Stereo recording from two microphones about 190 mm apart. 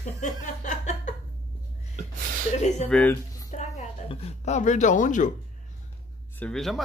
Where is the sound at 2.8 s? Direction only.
5° left (ahead or behind).